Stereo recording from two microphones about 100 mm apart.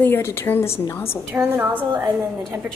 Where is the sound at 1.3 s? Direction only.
20° right (ahead or behind).